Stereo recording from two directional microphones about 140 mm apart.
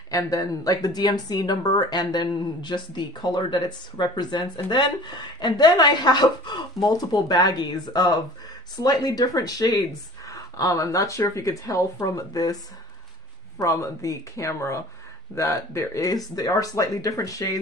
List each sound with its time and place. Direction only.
0.1 s speech: 25° left (ahead or behind)
13.6 s speech: 20° left (ahead or behind)